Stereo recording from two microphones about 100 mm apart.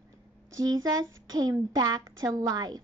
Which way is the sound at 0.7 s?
40° right (ahead or behind).